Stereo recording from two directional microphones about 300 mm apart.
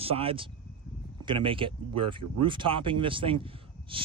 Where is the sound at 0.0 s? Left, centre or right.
Centre.